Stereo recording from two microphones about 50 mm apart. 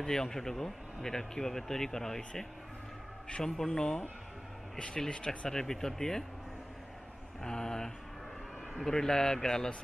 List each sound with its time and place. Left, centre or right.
0.0 s speech: centre
5.5 s speech: centre
7.4 s speech: centre